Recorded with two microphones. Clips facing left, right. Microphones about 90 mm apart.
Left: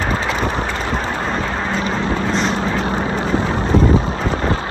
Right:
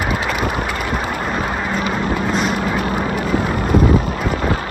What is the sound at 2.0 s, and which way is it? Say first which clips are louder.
Vehicle: even; 10° right (ahead or behind).